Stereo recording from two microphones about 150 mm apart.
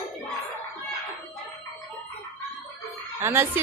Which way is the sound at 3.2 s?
15° right (ahead or behind).